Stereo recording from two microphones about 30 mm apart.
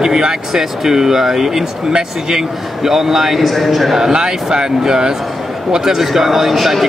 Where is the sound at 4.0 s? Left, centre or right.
Right.